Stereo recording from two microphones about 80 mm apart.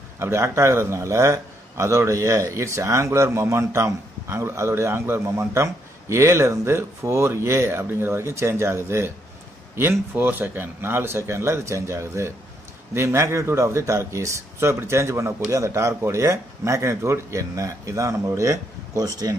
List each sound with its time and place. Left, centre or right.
0.2 s a man's voice: right